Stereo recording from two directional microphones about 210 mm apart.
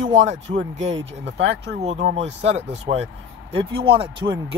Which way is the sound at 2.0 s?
55° right (ahead or behind).